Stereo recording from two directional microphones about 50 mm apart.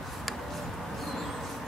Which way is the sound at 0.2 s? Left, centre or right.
Centre.